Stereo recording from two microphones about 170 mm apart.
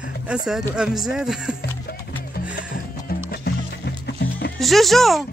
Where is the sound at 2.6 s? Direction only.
60° left (ahead or behind).